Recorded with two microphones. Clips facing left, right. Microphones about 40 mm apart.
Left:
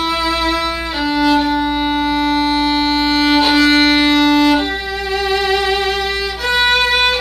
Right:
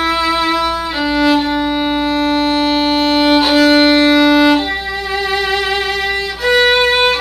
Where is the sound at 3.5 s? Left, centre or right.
Centre.